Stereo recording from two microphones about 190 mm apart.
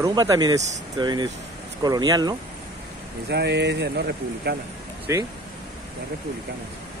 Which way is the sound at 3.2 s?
60° right (ahead or behind).